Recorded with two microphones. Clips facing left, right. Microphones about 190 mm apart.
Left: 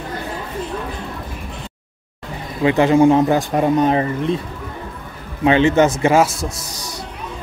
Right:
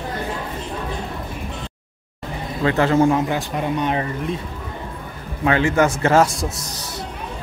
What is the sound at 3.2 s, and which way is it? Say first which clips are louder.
Speech: left 7 dB; 45° left (ahead or behind).